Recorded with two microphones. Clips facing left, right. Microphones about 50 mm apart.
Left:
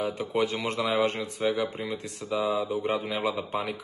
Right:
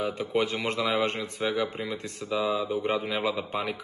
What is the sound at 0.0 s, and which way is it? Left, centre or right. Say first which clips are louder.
Speech: even; right.